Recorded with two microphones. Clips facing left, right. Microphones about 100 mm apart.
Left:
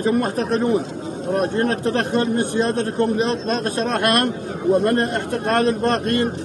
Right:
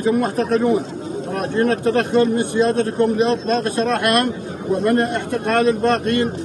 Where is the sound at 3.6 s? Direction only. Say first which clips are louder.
Right 1 dB; 40° left (ahead or behind).